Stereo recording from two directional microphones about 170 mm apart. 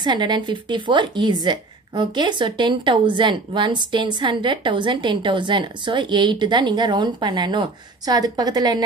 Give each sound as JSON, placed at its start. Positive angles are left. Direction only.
{"t": 0.0, "sound": "speech", "side_deg": -25}